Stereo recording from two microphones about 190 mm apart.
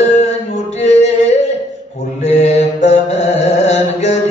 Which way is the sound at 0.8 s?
35° left (ahead or behind).